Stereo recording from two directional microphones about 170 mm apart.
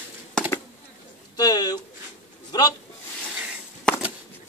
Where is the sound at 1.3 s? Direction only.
20° left (ahead or behind).